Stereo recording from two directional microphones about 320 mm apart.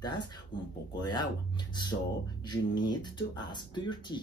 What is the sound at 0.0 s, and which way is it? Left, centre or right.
Speech, centre.